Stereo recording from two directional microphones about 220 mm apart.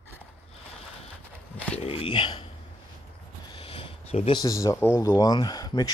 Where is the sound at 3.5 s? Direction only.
25° left (ahead or behind).